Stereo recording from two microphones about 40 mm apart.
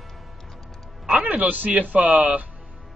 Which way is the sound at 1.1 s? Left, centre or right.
Right.